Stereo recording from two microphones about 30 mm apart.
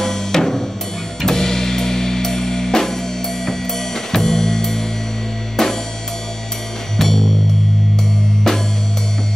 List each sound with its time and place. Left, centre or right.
0.0 s music: centre
7.0 s music: centre
8.5 s music: centre